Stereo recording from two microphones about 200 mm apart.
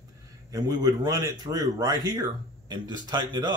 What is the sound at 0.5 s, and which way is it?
A man's voice, 15° right (ahead or behind).